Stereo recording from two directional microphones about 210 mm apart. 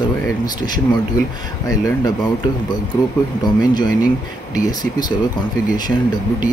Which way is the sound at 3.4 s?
20° left (ahead or behind).